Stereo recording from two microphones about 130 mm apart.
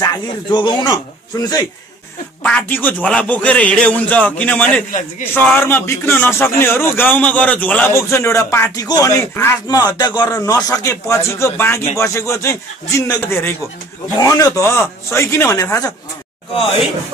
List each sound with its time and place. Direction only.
0.0 s speech: 30° left (ahead or behind)
2.4 s speech: 15° left (ahead or behind)
9.7 s speech: 30° left (ahead or behind)